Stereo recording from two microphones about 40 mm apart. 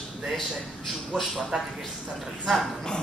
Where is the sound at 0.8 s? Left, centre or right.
Centre.